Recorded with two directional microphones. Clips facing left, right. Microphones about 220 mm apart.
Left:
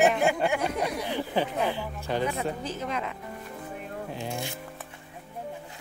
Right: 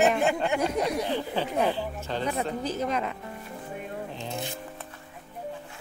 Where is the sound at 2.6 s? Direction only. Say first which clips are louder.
Right 4 dB; 40° right (ahead or behind).